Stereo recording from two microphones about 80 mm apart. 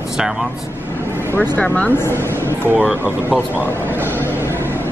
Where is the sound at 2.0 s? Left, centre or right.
Left.